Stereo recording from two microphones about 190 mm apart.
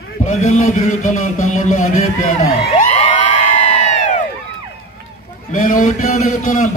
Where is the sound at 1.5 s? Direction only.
40° left (ahead or behind).